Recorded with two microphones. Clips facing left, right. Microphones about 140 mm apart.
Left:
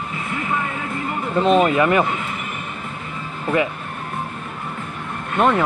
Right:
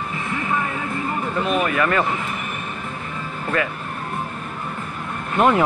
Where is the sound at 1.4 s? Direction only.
30° left (ahead or behind).